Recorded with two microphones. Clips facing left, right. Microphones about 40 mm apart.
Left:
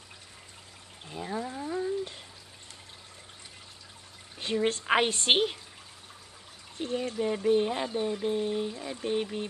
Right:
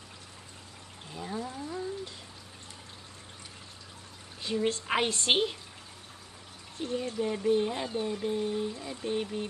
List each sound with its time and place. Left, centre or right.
1.1 s a sound: centre
4.4 s a woman's voice: left
4.8 s a woman's voice: centre
6.8 s a woman's voice: left